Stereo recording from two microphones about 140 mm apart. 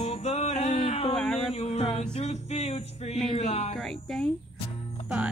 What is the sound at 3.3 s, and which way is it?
Speech, 50° left (ahead or behind).